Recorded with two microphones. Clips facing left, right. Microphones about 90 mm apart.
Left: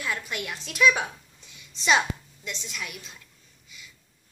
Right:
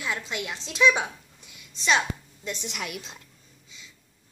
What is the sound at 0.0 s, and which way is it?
A child's voice, 20° right (ahead or behind).